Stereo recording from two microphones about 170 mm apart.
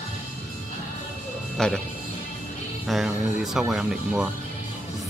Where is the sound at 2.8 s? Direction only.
Centre (ahead or behind).